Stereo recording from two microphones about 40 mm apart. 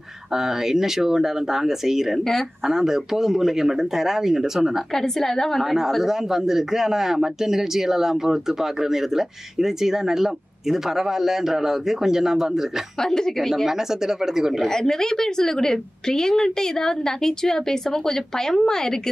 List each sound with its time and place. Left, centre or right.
0.3 s a man's voice: centre
4.9 s a woman's voice: centre
5.6 s a man's voice: centre
13.0 s a woman's voice: centre
13.7 s a man's voice: centre
14.7 s a woman's voice: centre